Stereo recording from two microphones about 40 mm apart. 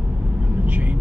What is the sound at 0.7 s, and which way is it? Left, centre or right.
Vehicle, right.